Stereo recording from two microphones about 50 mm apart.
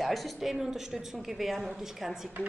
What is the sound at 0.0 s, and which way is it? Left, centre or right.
Speech, centre.